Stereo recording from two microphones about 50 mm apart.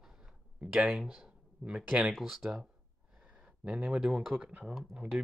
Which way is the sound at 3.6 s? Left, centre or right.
Right.